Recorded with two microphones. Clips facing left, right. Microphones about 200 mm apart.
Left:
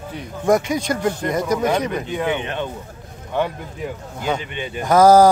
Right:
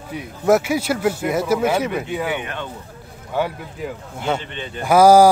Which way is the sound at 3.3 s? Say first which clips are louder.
Even; 5° right (ahead or behind).